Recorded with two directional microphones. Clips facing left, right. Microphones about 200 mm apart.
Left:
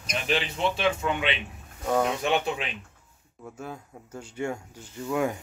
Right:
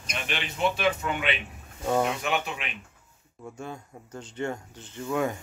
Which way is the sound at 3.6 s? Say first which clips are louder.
Left 1 dB; 5° left (ahead or behind).